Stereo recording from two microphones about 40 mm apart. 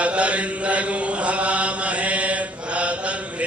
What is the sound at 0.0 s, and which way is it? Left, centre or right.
Chant, right.